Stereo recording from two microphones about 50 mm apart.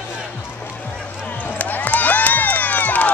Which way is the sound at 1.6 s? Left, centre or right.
Left.